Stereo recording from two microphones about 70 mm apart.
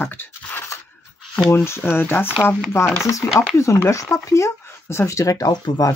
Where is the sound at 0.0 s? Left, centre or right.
Left.